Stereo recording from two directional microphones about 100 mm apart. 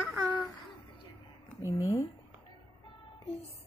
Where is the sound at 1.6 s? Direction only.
30° left (ahead or behind).